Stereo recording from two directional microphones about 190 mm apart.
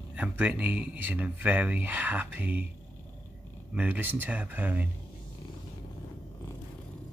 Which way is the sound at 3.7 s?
10° right (ahead or behind).